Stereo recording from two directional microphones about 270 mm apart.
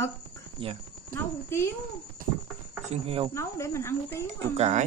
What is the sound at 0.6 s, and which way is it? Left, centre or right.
Speech, centre.